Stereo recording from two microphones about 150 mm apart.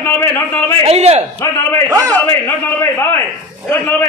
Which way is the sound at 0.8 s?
45° right (ahead or behind).